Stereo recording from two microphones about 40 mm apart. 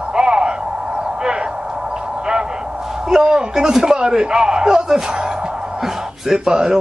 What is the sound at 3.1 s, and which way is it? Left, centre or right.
Speech, centre.